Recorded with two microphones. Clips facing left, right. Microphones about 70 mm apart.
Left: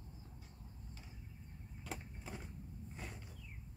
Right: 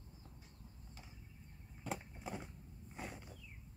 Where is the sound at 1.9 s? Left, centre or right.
Centre.